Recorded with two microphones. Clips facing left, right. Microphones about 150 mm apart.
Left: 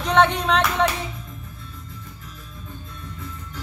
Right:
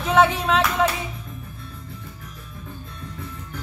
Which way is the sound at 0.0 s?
5° right (ahead or behind).